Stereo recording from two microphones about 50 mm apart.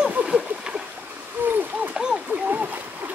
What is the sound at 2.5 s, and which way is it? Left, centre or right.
Splash, right.